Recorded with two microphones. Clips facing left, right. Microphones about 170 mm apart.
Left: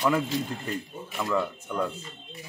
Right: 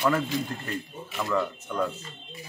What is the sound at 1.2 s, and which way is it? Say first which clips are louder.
Speech: even; 10° left (ahead or behind).